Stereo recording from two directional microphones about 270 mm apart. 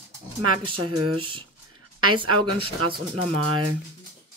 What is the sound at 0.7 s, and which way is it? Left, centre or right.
Speech, right.